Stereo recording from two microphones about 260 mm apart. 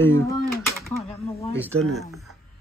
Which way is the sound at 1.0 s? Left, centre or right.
Left.